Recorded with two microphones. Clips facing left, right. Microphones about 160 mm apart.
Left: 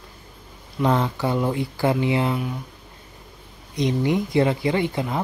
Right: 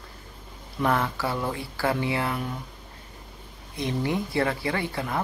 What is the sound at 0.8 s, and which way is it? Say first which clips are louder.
Speech: left 4 dB; 20° left (ahead or behind).